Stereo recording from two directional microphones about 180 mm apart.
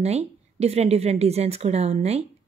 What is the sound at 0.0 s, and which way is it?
A woman's voice, 35° right (ahead or behind).